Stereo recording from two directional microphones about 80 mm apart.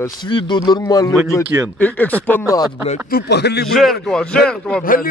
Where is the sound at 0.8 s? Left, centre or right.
Left.